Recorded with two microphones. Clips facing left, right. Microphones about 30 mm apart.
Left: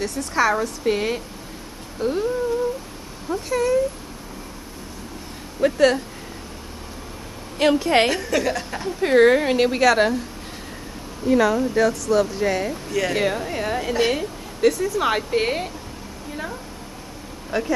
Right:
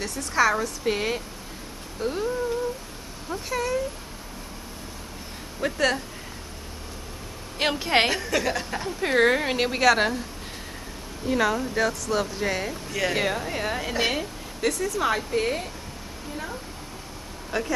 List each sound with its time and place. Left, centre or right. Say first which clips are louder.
0.0 s speech: left 2 dB; centre
3.4 s speech: left 7 dB; centre
5.6 s speech: left 7 dB; centre
7.8 s speech: left 3 dB; centre
11.2 s speech: left 6 dB; centre
15.1 s a woman's voice: left 4 dB; left
17.5 s speech: left 4 dB; centre